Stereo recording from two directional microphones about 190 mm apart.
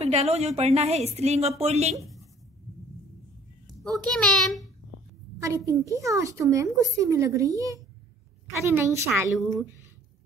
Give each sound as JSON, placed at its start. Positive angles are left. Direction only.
{"t": 0.0, "sound": "a woman's voice", "side_deg": -35}
{"t": 3.8, "sound": "a child's voice", "side_deg": 0}
{"t": 5.7, "sound": "a woman's voice", "side_deg": -15}
{"t": 9.4, "sound": "a child's voice", "side_deg": 0}